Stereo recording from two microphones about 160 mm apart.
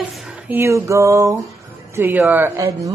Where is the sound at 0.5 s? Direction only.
15° right (ahead or behind).